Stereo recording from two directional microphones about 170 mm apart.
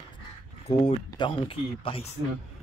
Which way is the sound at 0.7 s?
30° left (ahead or behind).